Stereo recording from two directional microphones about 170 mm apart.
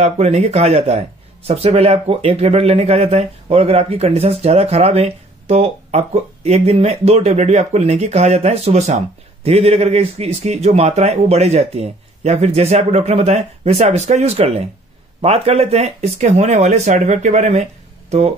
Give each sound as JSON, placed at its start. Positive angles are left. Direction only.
{"t": 0.0, "sound": "speech", "side_deg": -40}